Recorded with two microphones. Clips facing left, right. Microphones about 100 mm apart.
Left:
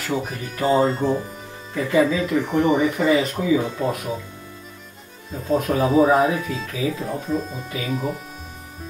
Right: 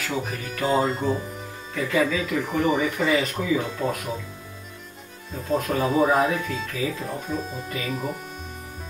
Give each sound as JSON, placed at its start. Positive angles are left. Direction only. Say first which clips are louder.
{"t": 0.1, "sound": "speech", "louder": "left 6 dB", "side_deg": 0}
{"t": 1.9, "sound": "speech", "louder": "left 5 dB", "side_deg": 10}
{"t": 2.1, "sound": "speech", "louder": "left 4 dB", "side_deg": 0}
{"t": 5.3, "sound": "speech", "louder": "left 3 dB", "side_deg": 0}